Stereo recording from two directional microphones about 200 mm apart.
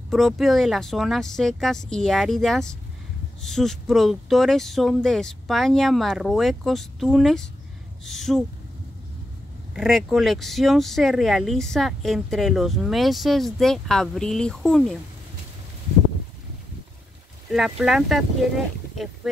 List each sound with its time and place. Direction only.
0.1 s speech: centre (ahead or behind)
9.8 s speech: centre (ahead or behind)
17.5 s speech: centre (ahead or behind)